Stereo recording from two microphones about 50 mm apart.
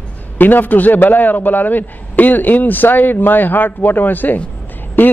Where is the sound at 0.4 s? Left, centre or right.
Left.